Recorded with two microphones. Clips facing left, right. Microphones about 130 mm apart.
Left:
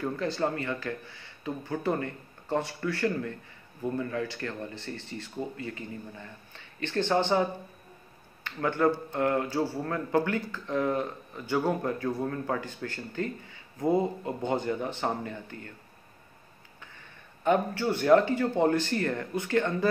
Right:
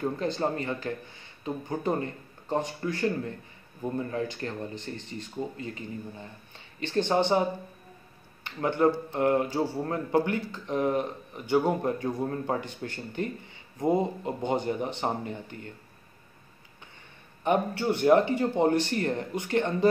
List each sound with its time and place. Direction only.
0.0 s speech: 25° right (ahead or behind)
4.0 s speech: 30° right (ahead or behind)
8.5 s speech: 20° right (ahead or behind)
17.4 s speech: 15° right (ahead or behind)